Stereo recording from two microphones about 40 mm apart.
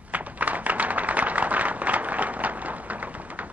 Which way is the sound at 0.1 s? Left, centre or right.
Right.